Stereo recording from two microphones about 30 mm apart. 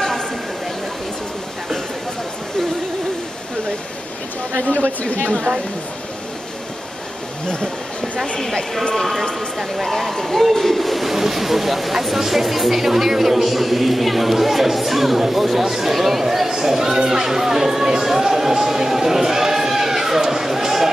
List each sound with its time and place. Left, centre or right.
4.6 s speech: left
5.2 s a woman's voice: right
9.8 s speech: centre
16.4 s speech: centre